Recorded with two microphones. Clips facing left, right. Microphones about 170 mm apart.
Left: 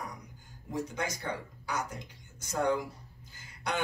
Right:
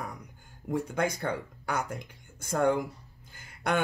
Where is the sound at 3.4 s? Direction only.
55° right (ahead or behind).